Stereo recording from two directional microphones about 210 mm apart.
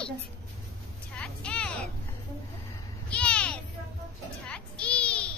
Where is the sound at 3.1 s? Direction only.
5° left (ahead or behind).